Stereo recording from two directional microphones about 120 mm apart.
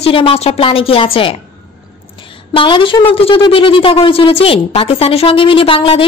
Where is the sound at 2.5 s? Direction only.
45° left (ahead or behind).